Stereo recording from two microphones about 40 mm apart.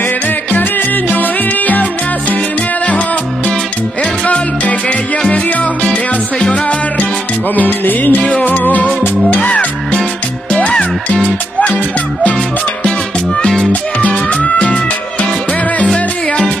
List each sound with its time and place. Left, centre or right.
0.5 s music: left
4.3 s music: left
6.4 s music: left
7.5 s music: left
10.5 s music: left
11.6 s music: left
13.7 s music: left